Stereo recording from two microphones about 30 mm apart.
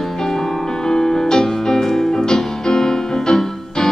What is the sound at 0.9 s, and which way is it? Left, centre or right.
Music, centre.